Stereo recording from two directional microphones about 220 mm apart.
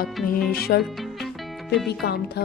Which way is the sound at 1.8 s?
50° left (ahead or behind).